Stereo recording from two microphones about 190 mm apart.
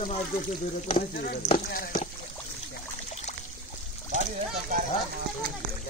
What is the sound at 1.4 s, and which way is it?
Speech, 40° left (ahead or behind).